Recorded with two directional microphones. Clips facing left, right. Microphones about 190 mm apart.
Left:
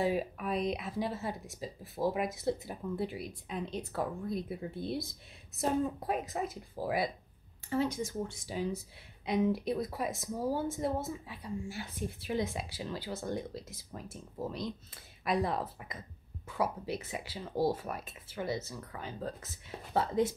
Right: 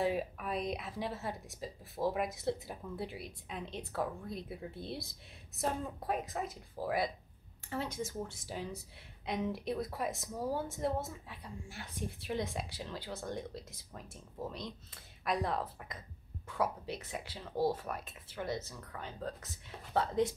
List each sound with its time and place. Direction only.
0.0 s speech: centre (ahead or behind)